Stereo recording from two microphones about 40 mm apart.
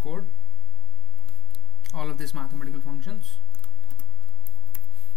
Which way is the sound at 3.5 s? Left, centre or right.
Left.